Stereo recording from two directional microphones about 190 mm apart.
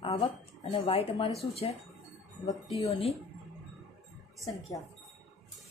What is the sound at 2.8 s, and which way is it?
Speech, 30° left (ahead or behind).